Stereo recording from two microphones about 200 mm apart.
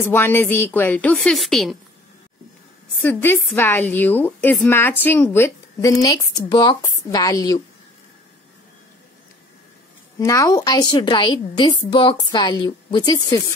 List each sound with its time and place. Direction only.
0.0 s a woman's voice: 10° left (ahead or behind)
3.0 s a woman's voice: 10° left (ahead or behind)
10.1 s a woman's voice: 15° left (ahead or behind)